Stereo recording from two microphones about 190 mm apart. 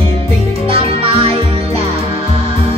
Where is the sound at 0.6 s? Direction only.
30° right (ahead or behind).